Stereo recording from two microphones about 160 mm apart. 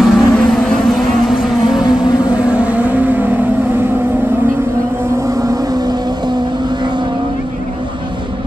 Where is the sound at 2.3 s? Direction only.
5° right (ahead or behind).